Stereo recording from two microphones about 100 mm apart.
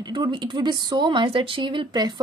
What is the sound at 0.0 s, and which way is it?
A woman's voice, 50° right (ahead or behind).